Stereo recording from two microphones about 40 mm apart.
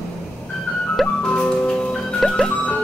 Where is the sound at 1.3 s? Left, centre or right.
Left.